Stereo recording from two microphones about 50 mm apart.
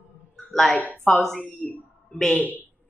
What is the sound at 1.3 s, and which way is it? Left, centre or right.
A woman's voice, left.